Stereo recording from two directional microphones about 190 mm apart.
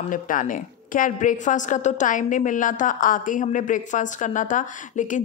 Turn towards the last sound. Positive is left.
turn(degrees=40)  # may be behind; listen again after turning